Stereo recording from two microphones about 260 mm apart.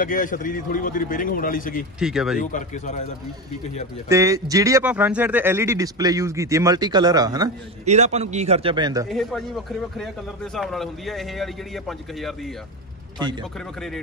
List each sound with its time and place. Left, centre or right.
0.0 s a man's voice: left
2.0 s a man's voice: centre
2.5 s speech: left
4.1 s speech: centre
7.8 s a man's voice: right
9.1 s a man's voice: centre
13.2 s speech: centre